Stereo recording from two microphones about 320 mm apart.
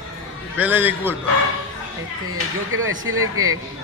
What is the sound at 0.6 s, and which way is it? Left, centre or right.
Speech, centre.